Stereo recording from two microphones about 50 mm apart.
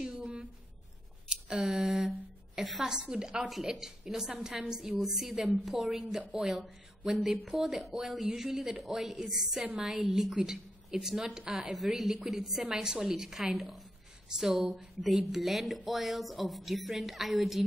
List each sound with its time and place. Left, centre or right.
0.2 s a sound: right
1.3 s a woman's voice: centre
3.4 s a woman's voice: centre
11.7 s a woman's voice: centre